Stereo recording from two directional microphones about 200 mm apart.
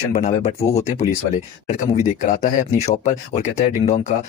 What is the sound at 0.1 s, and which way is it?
Speech, 35° left (ahead or behind).